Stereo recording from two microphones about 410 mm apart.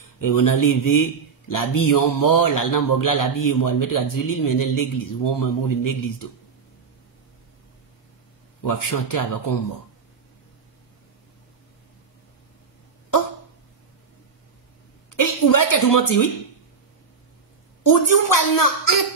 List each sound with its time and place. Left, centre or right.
0.2 s a man's voice: left
8.6 s a man's voice: left
15.1 s a sound: left
17.8 s a man's voice: left